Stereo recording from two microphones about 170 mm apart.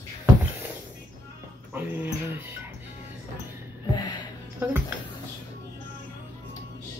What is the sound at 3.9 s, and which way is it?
Music, 25° left (ahead or behind).